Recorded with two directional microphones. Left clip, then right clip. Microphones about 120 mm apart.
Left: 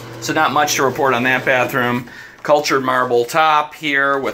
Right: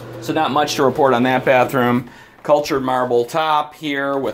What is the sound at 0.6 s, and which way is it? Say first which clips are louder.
Speech: even; 65° right (ahead or behind).